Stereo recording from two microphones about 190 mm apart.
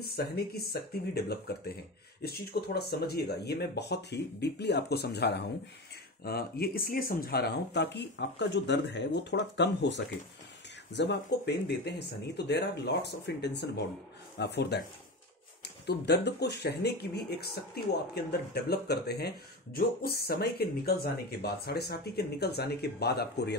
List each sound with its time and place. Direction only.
0.0 s speech: 55° left (ahead or behind)